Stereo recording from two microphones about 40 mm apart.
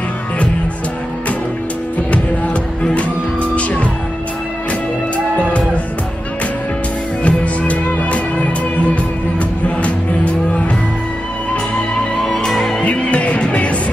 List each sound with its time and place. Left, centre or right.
3.5 s music: left
7.2 s music: left
12.4 s music: centre
12.8 s music: left